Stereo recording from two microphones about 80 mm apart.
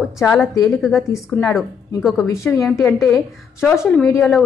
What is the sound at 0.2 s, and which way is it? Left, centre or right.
Speech, centre.